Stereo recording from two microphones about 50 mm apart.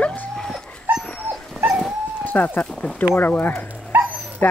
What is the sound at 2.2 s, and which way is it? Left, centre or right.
Speech, left.